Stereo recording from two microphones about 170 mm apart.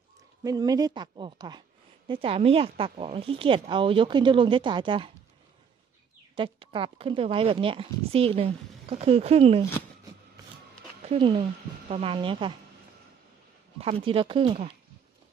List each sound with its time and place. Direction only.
0.4 s a woman's voice: 20° right (ahead or behind)
6.3 s speech: 30° right (ahead or behind)
11.1 s speech: 30° right (ahead or behind)
13.7 s speech: 35° right (ahead or behind)